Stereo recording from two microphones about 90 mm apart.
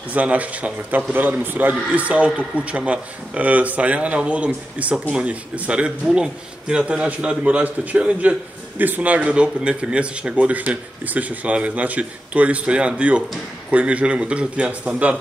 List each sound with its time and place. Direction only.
0.1 s speech: 15° right (ahead or behind)